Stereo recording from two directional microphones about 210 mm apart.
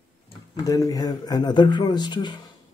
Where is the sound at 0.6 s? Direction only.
15° left (ahead or behind).